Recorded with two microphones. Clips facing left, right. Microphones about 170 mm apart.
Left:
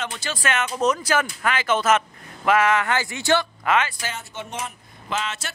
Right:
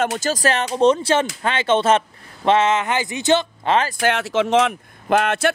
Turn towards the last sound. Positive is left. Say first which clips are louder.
# right 11 dB
turn(degrees=-60)  # may be behind; listen again after turning